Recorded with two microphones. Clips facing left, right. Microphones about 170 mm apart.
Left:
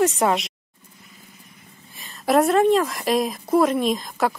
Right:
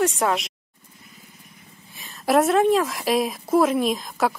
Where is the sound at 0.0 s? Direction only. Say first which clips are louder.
Left 2 dB; centre (ahead or behind).